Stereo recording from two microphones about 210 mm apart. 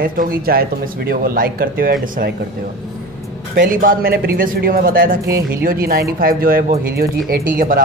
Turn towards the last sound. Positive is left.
turn(degrees=-40)  # may be behind; listen again after turning